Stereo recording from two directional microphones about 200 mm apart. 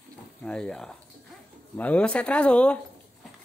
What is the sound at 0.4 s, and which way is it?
A woman's voice, 5° left (ahead or behind).